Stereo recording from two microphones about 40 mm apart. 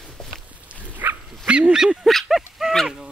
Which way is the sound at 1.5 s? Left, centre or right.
Right.